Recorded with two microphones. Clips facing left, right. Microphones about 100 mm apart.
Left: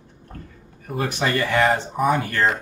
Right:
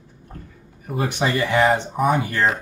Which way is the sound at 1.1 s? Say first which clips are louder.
Right 1 dB; 20° right (ahead or behind).